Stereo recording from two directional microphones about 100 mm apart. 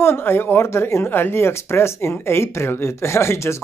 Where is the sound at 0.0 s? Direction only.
25° left (ahead or behind).